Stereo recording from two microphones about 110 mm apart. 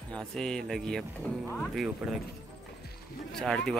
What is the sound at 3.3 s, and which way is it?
Speech, 5° left (ahead or behind).